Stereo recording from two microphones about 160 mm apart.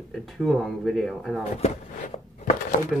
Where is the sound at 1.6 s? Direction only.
45° left (ahead or behind).